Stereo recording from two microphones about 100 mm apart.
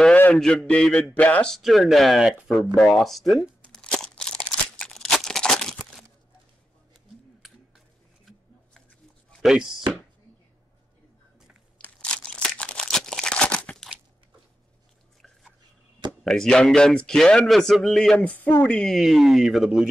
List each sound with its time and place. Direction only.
0.1 s a sound: 15° left (ahead or behind)
0.4 s a man's voice: 5° left (ahead or behind)
1.6 s speech: centre (ahead or behind)
3.6 s crumpling: 10° left (ahead or behind)
9.4 s speech: 5° right (ahead or behind)
11.8 s a sound: 10° left (ahead or behind)
12.8 s crumpling: 5° left (ahead or behind)
16.3 s speech: 5° left (ahead or behind)
18.1 s a man's voice: 15° left (ahead or behind)
18.9 s speech: 5° right (ahead or behind)